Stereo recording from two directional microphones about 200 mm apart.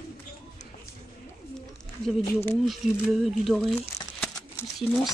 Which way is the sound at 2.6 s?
Centre (ahead or behind).